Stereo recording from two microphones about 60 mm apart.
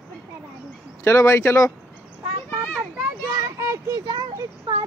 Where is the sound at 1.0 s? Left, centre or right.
Left.